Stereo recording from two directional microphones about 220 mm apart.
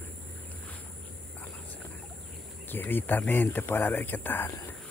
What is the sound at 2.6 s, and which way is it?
Speech, 10° left (ahead or behind).